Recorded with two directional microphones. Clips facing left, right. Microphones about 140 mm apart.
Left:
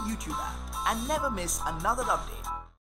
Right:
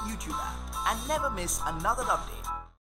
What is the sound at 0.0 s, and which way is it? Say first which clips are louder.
Speech: left 2 dB; centre (ahead or behind).